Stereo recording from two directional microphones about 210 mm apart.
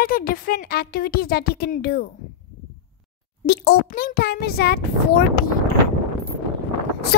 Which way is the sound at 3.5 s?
50° left (ahead or behind).